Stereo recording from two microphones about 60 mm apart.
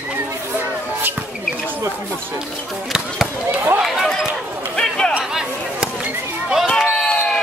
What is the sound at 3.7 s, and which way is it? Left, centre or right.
Chatter, centre.